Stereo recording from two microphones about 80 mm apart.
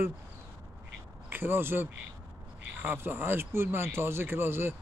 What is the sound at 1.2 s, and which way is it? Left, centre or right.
Speech, right.